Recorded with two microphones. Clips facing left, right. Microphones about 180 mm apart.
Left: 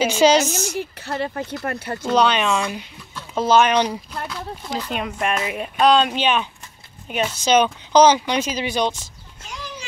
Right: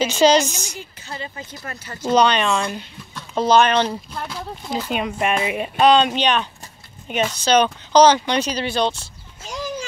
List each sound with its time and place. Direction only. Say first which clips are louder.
0.0 s speech: even; 10° left (ahead or behind)
0.7 s speech: left 8 dB; 65° left (ahead or behind)
2.1 s speech: right 1 dB; 5° left (ahead or behind)
4.6 s speech: right 3 dB; 5° right (ahead or behind)